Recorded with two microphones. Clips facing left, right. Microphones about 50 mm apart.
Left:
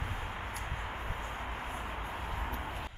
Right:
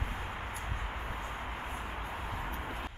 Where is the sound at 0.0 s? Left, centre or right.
Centre.